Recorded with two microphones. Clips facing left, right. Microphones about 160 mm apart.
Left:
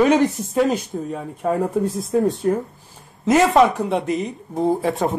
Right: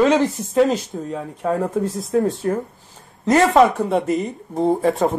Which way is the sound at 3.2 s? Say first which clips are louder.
Right 1 dB; centre (ahead or behind).